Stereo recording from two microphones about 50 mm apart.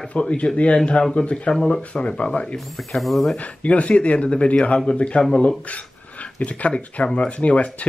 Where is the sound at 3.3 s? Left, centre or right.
Left.